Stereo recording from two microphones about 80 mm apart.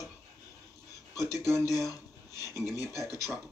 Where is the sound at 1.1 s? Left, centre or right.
Left.